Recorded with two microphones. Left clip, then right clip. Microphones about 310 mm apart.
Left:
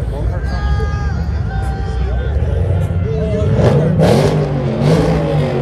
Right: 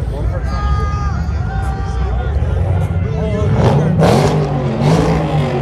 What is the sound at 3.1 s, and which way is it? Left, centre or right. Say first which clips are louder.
Vehicle: left 2 dB; right.